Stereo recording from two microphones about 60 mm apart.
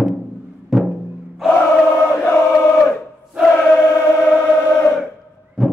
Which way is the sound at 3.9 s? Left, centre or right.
Left.